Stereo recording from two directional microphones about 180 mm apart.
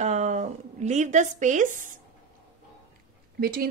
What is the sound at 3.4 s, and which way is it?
Speech, 55° right (ahead or behind).